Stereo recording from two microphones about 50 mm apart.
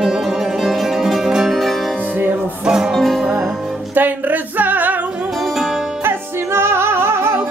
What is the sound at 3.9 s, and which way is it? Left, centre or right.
Music, right.